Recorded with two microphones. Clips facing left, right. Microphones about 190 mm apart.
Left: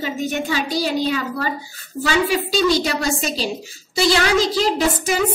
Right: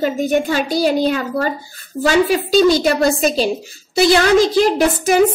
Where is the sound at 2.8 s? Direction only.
55° right (ahead or behind).